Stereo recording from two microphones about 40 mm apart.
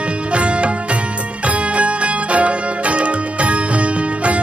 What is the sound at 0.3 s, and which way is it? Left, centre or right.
Music, right.